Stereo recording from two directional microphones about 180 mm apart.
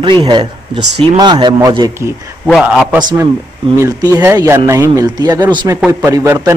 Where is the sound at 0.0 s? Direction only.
25° right (ahead or behind).